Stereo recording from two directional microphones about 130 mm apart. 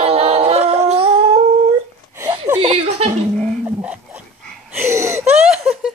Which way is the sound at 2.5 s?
45° right (ahead or behind).